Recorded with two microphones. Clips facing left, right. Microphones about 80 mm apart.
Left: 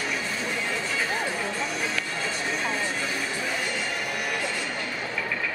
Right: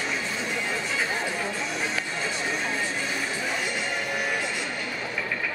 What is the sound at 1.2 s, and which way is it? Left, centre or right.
Music, centre.